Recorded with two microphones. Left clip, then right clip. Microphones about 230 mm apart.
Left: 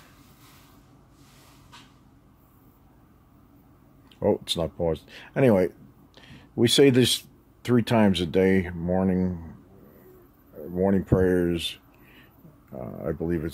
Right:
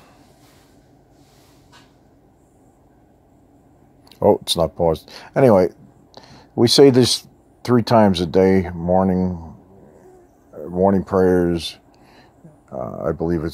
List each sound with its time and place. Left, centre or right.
4.1 s speech: centre
10.7 s speech: centre